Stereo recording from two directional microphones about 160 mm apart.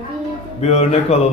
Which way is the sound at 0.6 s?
40° left (ahead or behind).